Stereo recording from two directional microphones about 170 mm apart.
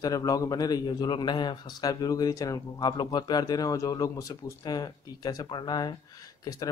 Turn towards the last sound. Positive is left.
turn(degrees=20)  # may be behind; listen again after turning